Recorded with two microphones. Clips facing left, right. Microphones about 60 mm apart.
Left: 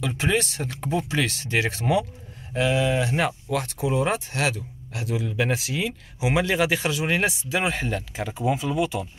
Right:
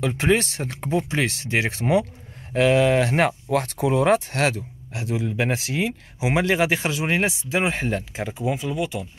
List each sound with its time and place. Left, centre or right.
0.0 s speech: right
2.5 s speech: right
4.6 s speech: right
8.3 s speech: centre